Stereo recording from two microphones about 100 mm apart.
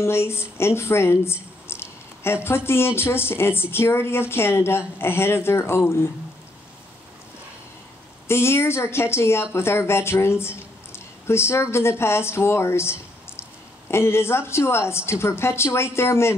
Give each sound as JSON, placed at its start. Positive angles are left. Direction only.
{"t": 0.0, "sound": "speech", "side_deg": 25}
{"t": 8.3, "sound": "speech", "side_deg": 25}